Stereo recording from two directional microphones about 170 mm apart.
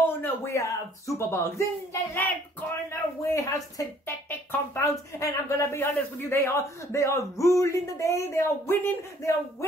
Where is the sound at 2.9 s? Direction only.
15° left (ahead or behind).